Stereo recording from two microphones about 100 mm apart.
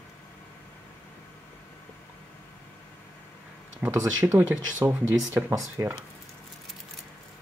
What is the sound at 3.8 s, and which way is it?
Speech, 25° right (ahead or behind).